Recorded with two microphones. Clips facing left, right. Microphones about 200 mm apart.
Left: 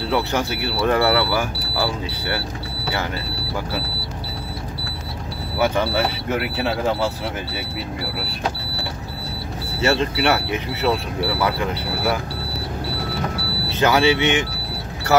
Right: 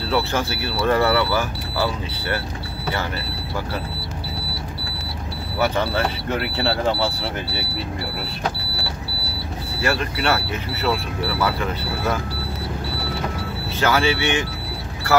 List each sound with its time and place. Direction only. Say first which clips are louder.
0.1 s speech: even; 15° left (ahead or behind)
5.6 s speech: left 1 dB; 10° left (ahead or behind)
9.8 s speech: left 4 dB; 25° left (ahead or behind)
13.7 s speech: left 3 dB; 15° left (ahead or behind)